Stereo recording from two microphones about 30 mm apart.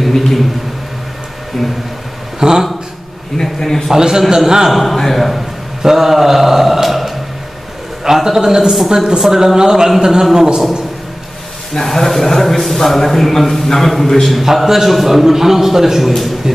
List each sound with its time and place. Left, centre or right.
0.0 s a sound: centre
1.5 s a man's voice: centre
2.4 s a man's voice: right
3.5 s a man's voice: centre
3.9 s a man's voice: right
4.6 s a man's voice: centre
5.8 s speech: centre
8.0 s a man's voice: centre
11.7 s a man's voice: centre
14.4 s a man's voice: centre